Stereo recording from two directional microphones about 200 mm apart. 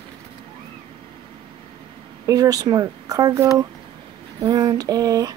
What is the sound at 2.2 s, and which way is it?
Speech, 20° right (ahead or behind).